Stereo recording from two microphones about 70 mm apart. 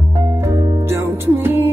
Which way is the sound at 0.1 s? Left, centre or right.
Right.